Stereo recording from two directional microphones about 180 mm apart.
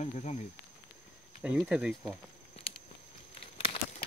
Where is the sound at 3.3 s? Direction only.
30° left (ahead or behind).